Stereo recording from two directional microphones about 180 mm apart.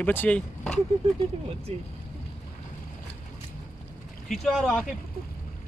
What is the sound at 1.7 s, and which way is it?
Speech, 35° right (ahead or behind).